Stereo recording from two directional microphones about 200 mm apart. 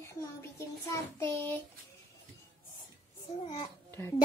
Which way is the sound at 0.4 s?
10° left (ahead or behind).